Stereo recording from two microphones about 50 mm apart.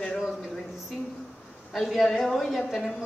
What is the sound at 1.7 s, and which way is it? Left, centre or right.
A woman's voice, centre.